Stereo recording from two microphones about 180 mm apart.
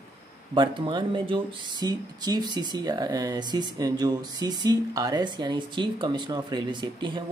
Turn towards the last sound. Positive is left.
turn(degrees=-25)  # may be behind; listen again after turning